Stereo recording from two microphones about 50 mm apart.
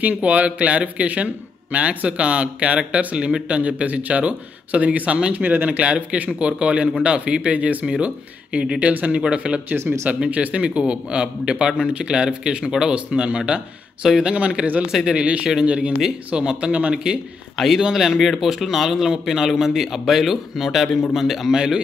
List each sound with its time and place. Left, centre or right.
0.2 s a man's voice: right
5.4 s speech: right
5.7 s a man's voice: right
7.8 s a man's voice: centre
9.8 s speech: right
10.2 s a man's voice: right
14.0 s speech: centre
14.3 s a man's voice: right
14.9 s speech: centre
15.1 s a man's voice: right
16.9 s speech: centre
17.6 s speech: centre